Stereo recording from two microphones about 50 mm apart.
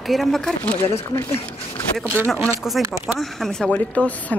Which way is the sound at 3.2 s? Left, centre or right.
Centre.